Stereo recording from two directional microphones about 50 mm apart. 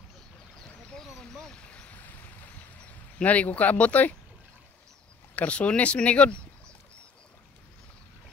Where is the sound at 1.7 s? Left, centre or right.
Left.